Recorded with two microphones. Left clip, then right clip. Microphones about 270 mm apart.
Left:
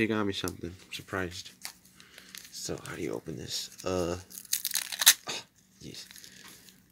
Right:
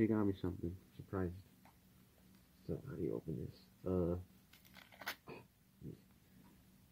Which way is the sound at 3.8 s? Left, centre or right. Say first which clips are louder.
Left 7 dB; left.